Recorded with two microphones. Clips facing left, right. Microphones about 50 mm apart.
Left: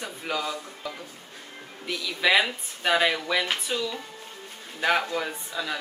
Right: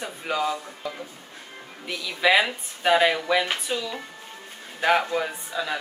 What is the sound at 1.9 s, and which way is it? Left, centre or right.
Speech, centre.